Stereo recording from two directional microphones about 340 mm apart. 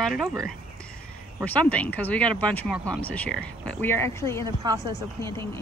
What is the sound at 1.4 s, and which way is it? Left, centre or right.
Speech, centre.